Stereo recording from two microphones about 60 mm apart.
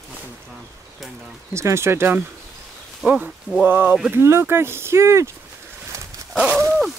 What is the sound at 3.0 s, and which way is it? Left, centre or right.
Speech, right.